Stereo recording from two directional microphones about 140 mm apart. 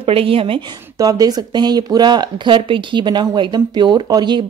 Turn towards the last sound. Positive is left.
turn(degrees=-30)  # may be behind; listen again after turning